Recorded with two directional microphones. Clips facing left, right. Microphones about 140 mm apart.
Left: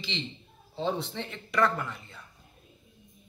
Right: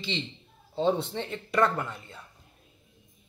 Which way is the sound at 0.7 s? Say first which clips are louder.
Right 5 dB; 20° right (ahead or behind).